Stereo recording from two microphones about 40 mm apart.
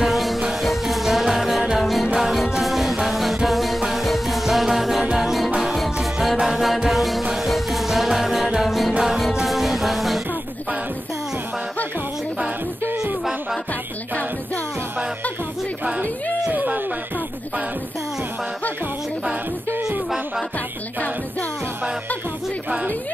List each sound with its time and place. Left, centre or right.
0.0 s music: centre
16.5 s music: right